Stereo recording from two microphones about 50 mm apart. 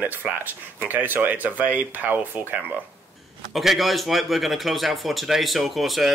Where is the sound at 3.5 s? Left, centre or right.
Centre.